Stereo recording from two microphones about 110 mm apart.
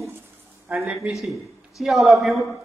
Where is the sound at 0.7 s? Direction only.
15° right (ahead or behind).